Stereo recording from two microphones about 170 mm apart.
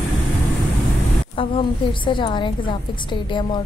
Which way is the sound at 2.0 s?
30° left (ahead or behind).